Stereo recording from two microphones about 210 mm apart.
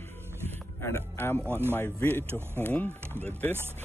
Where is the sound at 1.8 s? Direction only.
10° left (ahead or behind).